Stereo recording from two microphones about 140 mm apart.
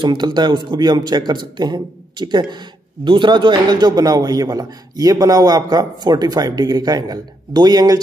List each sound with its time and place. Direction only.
0.0 s speech: 30° right (ahead or behind)